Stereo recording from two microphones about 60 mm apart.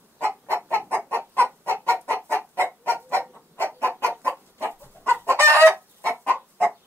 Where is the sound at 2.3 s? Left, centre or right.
Right.